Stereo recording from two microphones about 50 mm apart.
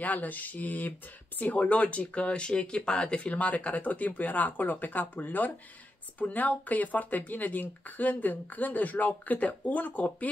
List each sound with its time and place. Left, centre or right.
0.0 s speech: left